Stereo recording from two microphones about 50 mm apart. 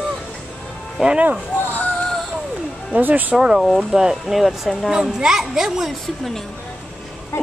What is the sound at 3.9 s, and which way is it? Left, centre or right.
Speech, centre.